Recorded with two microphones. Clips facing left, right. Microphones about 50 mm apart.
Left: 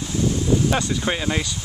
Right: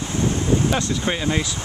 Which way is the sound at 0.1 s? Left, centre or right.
Right.